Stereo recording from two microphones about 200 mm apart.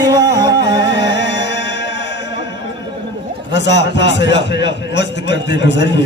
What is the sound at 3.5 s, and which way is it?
A man's voice, 60° left (ahead or behind).